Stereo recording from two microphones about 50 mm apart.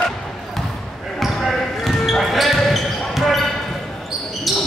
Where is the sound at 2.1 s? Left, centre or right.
Centre.